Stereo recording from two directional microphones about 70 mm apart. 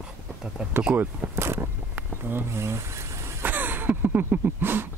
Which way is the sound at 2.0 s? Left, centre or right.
Right.